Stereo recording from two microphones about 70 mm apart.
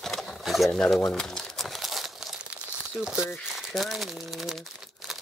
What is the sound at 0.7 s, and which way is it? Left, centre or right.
Crumpling, centre.